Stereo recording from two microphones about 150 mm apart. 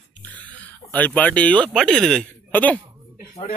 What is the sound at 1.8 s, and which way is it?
Speech, 5° left (ahead or behind).